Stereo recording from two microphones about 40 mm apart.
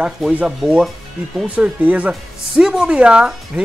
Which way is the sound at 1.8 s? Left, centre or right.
Right.